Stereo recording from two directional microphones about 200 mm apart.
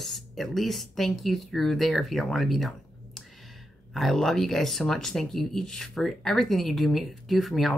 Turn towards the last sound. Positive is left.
turn(degrees=0)  # may be behind; listen again after turning